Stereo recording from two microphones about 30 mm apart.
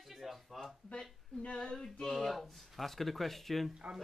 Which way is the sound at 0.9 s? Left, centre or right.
Left.